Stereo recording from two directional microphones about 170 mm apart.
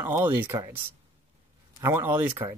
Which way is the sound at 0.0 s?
10° right (ahead or behind).